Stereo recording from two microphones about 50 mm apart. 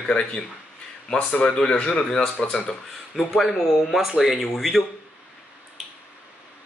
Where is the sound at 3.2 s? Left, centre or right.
Centre.